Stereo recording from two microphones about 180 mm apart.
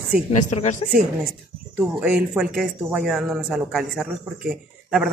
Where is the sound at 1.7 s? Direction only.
5° right (ahead or behind).